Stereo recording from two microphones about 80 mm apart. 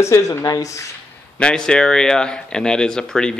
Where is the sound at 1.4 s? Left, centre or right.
Centre.